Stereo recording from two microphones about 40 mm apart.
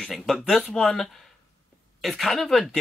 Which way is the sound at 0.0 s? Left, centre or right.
Centre.